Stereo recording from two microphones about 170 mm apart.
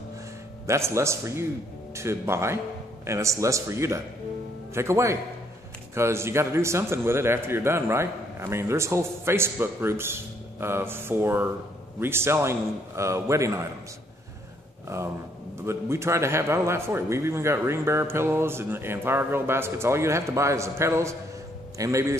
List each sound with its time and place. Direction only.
0.7 s a man's voice: 15° right (ahead or behind)
14.9 s a man's voice: 15° right (ahead or behind)